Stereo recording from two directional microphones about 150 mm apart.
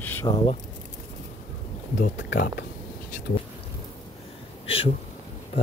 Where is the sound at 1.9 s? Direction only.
60° left (ahead or behind).